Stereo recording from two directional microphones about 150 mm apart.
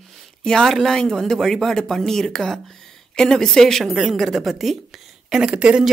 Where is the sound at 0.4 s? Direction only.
5° left (ahead or behind).